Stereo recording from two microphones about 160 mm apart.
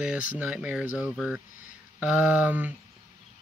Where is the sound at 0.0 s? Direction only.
5° right (ahead or behind).